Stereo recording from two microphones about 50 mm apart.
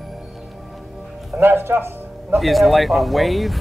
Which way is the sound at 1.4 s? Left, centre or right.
Right.